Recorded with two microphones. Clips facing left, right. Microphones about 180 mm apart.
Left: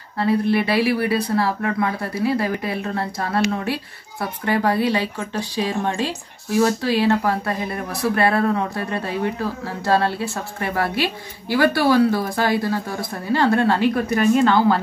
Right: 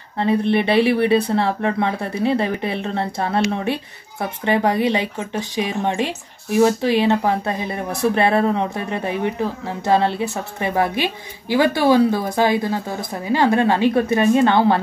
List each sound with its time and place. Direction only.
0.2 s speech: 20° right (ahead or behind)